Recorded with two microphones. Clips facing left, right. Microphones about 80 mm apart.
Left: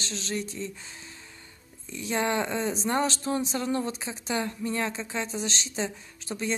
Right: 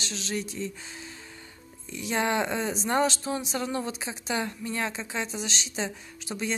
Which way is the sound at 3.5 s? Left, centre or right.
Right.